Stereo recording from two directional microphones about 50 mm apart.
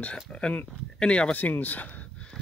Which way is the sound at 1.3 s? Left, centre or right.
Left.